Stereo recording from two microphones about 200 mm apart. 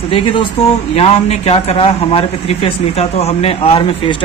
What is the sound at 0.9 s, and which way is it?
Speech, 30° left (ahead or behind).